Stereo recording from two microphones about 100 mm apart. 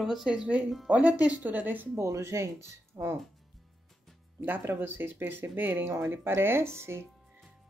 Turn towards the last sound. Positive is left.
turn(degrees=-25)  # may be behind; listen again after turning